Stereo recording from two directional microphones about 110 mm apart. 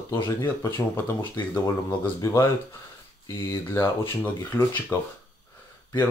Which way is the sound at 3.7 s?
20° left (ahead or behind).